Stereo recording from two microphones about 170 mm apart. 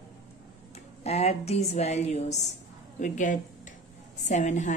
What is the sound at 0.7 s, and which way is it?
A woman's voice, 40° left (ahead or behind).